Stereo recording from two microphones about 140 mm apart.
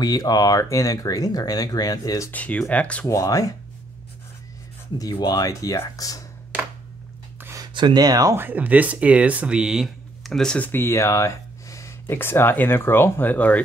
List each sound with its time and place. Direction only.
0.0 s speech: 30° left (ahead or behind)
2.3 s speech: 10° left (ahead or behind)
3.1 s speech: 25° left (ahead or behind)
4.9 s speech: 30° left (ahead or behind)
7.3 s speech: 20° right (ahead or behind); by 13.6 s 10° left (ahead or behind)